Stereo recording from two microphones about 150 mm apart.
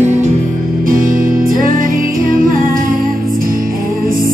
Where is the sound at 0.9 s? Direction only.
65° right (ahead or behind).